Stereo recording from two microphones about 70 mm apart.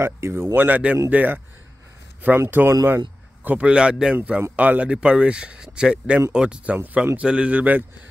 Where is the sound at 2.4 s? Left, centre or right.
Right.